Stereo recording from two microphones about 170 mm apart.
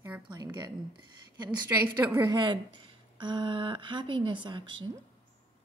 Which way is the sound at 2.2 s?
25° right (ahead or behind).